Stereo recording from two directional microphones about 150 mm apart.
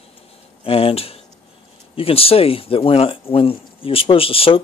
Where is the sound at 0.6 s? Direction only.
40° left (ahead or behind).